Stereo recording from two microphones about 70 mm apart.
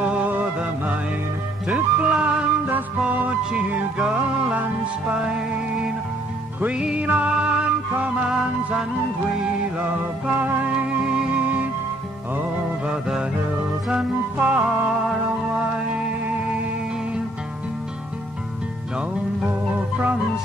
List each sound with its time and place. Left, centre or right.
0.0 s music: right
6.6 s music: centre
9.8 s music: centre
14.4 s music: centre